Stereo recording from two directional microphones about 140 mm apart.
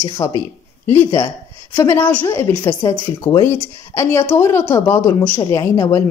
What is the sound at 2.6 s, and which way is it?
Speech, 30° left (ahead or behind).